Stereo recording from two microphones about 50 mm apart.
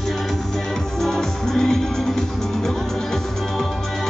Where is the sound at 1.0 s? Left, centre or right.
Centre.